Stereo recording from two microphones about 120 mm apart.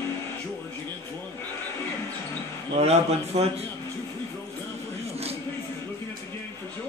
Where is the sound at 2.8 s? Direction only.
60° right (ahead or behind).